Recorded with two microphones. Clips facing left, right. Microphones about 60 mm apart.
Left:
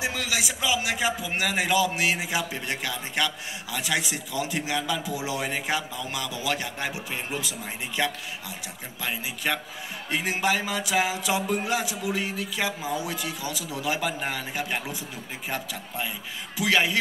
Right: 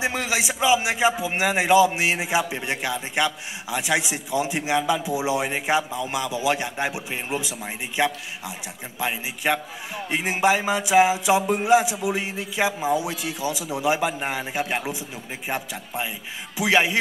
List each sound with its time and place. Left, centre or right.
0.0 s speech: right